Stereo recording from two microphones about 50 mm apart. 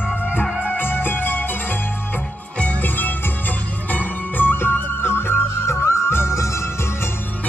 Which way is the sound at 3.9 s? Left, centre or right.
Left.